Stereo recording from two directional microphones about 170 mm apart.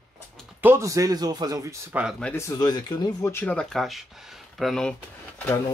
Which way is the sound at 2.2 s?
15° left (ahead or behind).